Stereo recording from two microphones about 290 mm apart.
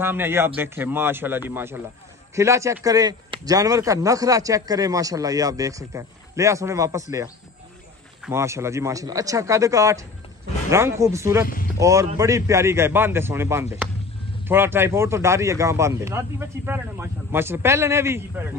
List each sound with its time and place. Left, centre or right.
0.0 s a man's voice: centre
8.3 s a man's voice: centre
11.4 s speech: left
11.8 s a man's voice: centre